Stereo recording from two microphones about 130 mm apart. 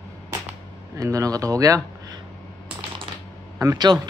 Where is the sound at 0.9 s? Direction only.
25° right (ahead or behind).